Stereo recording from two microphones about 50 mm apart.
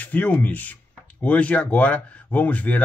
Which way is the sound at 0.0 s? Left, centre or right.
Left.